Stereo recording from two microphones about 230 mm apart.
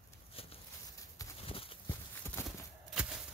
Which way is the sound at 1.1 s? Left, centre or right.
Left.